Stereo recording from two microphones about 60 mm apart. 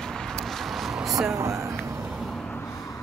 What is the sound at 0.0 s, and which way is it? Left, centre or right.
Vehicle, centre.